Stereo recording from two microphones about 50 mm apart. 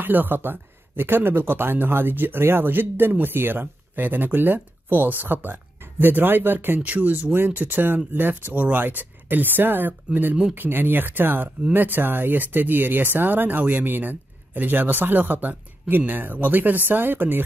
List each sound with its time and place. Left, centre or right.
0.0 s speech: right